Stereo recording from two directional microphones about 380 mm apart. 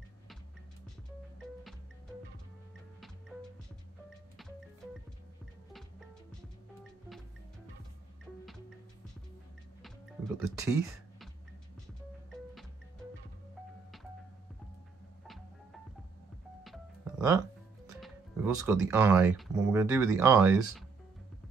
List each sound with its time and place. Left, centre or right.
5.7 s music: centre
10.6 s speech: centre
16.6 s music: centre
18.0 s speech: centre